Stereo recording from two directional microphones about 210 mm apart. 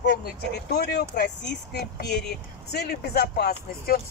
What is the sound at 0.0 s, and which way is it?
Speech, 50° left (ahead or behind).